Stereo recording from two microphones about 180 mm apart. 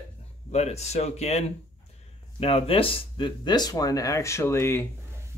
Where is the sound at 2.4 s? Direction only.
30° left (ahead or behind); by 4.8 s 15° left (ahead or behind).